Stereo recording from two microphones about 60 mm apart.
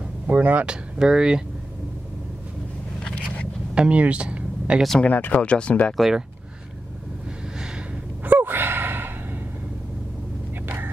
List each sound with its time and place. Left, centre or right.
0.3 s speech: right
0.7 s speech: centre
3.0 s vehicle: centre
3.7 s speech: centre
5.0 s speech: left
5.9 s speech: centre
8.2 s gasp: right